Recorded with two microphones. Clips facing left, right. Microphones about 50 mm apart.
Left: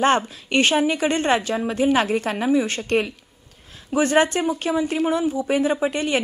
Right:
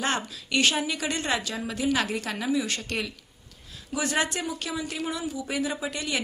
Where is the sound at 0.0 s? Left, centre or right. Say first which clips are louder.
Left 10 dB; left.